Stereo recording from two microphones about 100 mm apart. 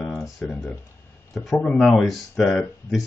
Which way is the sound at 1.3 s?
Centre (ahead or behind).